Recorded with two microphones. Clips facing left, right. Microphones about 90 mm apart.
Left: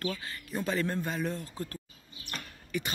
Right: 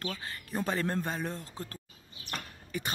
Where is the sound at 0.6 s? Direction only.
40° right (ahead or behind).